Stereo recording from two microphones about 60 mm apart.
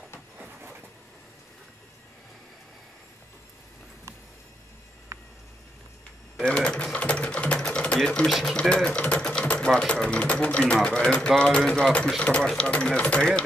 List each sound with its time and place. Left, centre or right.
5.1 s a sound: right
6.3 s sewing machine: centre
8.3 s speech: centre
8.5 s speech: centre